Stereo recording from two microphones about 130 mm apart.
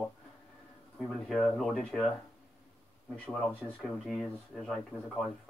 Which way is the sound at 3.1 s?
5° left (ahead or behind).